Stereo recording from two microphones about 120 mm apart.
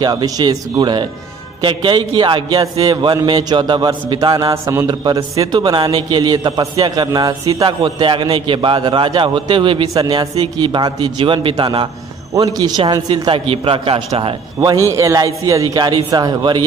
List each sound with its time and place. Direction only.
0.0 s a man's voice: 35° right (ahead or behind); by 14.3 s 50° right (ahead or behind)
14.9 s a man's voice: 25° right (ahead or behind)